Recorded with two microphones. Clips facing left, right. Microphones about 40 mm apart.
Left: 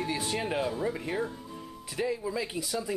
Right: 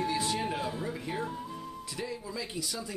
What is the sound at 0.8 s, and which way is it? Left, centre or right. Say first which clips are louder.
Speech: left 4 dB; centre.